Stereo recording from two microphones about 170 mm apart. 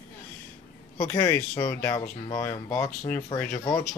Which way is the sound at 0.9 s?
20° left (ahead or behind).